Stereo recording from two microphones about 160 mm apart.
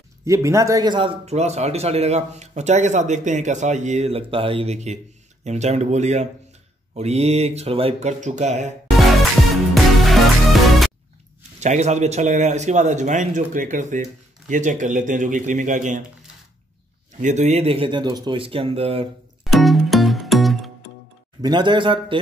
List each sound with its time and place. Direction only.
0.2 s speech: 20° right (ahead or behind); by 8.7 s 45° right (ahead or behind)
10.0 s music: centre (ahead or behind)
11.6 s speech: 45° right (ahead or behind)
17.2 s speech: 50° right (ahead or behind)
19.4 s music: centre (ahead or behind)
21.4 s a man's voice: 25° right (ahead or behind)